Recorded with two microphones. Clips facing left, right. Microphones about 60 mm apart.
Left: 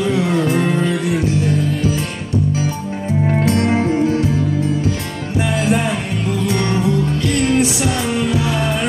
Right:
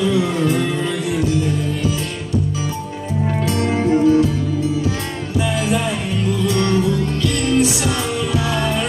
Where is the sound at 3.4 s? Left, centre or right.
Left.